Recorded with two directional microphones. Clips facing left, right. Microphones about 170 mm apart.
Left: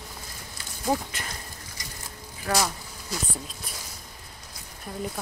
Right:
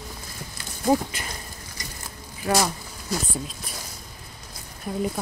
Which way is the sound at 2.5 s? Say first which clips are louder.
Right 4 dB; 20° right (ahead or behind).